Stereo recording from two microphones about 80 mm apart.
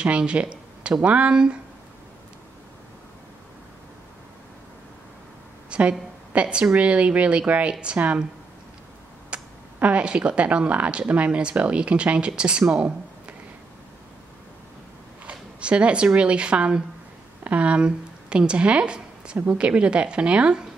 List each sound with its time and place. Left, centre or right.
0.0 s speech: centre
5.7 s a woman's voice: centre
9.3 s speech: centre
15.2 s speech: centre